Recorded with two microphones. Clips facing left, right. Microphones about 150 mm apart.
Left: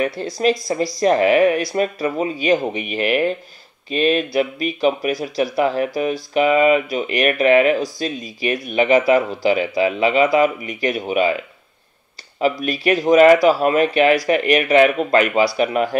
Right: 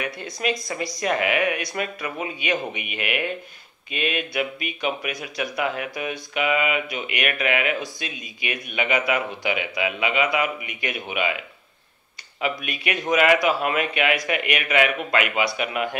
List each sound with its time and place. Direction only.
0.2 s speech: 35° left (ahead or behind)
12.4 s speech: 35° left (ahead or behind)